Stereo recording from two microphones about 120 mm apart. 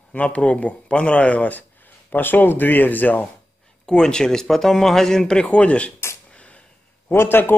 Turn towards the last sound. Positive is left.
turn(degrees=20)  # may be behind; listen again after turning